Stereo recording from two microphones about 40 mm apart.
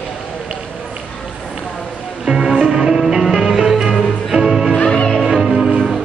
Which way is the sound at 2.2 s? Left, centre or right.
Centre.